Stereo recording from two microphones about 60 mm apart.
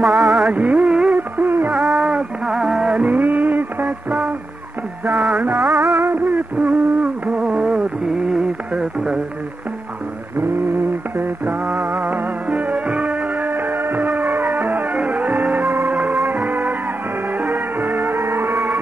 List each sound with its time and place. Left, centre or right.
0.0 s music: centre
0.5 s music: right
1.1 s music: right
1.7 s a sound: centre
2.0 s music: centre; by 4.2 s right
5.1 s music: centre
5.5 s music: right
6.0 s a sound: right; by 9.2 s centre
11.8 s music: right
15.6 s music: right
15.9 s music: right